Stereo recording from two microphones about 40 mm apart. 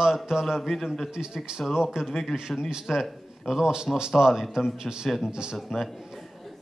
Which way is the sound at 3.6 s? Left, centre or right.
Centre.